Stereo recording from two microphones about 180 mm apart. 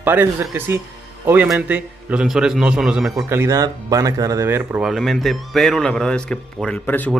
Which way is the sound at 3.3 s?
15° right (ahead or behind).